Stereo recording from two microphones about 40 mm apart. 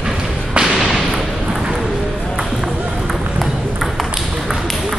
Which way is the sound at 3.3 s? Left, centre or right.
Centre.